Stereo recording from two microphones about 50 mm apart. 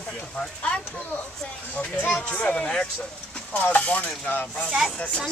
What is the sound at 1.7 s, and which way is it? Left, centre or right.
Speech, left.